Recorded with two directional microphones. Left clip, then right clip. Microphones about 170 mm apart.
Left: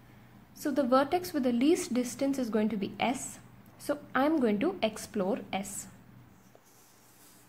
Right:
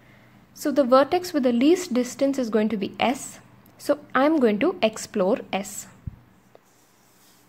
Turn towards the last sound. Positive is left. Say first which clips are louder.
# right 9 dB
turn(degrees=-30)  # may be behind; listen again after turning